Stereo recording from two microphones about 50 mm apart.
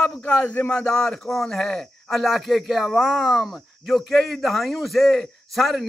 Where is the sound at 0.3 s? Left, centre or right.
Left.